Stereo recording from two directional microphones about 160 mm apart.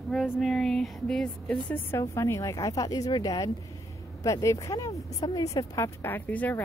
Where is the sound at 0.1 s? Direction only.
Centre (ahead or behind).